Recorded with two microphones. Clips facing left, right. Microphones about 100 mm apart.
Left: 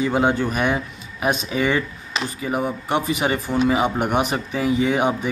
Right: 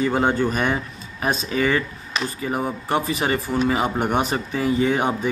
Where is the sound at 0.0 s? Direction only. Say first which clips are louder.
Even; 15° left (ahead or behind).